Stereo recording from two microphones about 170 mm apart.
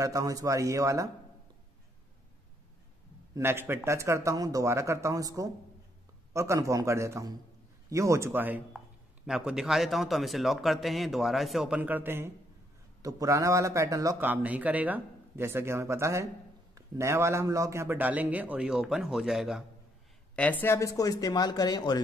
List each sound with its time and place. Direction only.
0.0 s speech: 20° right (ahead or behind)
3.3 s a man's voice: 15° right (ahead or behind)
20.3 s speech: 10° left (ahead or behind)